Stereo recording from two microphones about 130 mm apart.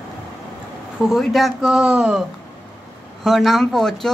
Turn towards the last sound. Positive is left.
turn(degrees=5)  # may be behind; listen again after turning